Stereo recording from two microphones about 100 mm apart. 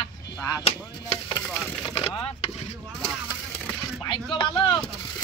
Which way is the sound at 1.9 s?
55° left (ahead or behind).